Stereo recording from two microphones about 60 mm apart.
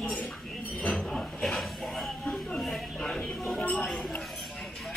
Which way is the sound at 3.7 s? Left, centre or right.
Left.